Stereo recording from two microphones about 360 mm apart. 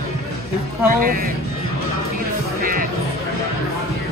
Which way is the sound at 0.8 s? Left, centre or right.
Right.